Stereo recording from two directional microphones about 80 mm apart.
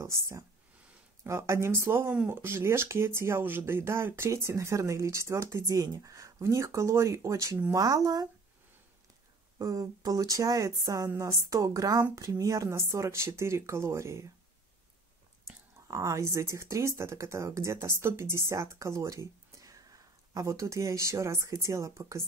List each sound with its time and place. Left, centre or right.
0.0 s speech: right
7.7 s speech: right
9.6 s speech: right
15.4 s speech: right